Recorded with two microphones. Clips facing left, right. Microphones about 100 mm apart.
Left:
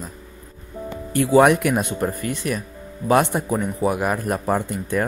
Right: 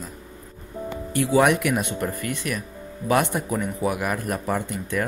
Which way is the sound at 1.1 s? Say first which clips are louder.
Left 4 dB; 40° left (ahead or behind).